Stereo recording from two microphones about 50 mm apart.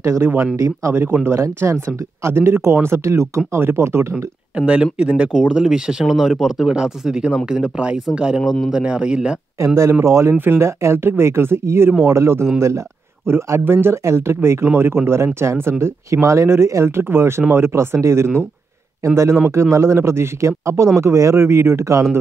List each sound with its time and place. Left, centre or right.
0.2 s speech: right
0.6 s speech: right
4.6 s speech: right; by 6.7 s centre
6.7 s speech: centre
10.0 s speech: right
10.3 s speech: right
10.6 s speech: right
12.5 s speech: right
13.2 s speech: right
14.0 s speech: right
15.8 s speech: right